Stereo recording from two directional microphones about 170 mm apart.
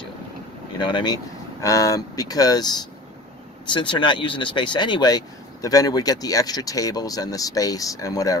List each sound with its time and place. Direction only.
0.7 s speech: 25° left (ahead or behind)